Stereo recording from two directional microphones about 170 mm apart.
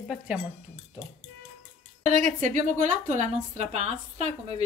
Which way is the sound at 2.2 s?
50° right (ahead or behind).